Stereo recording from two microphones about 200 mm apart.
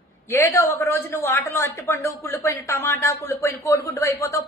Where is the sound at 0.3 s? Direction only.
10° left (ahead or behind).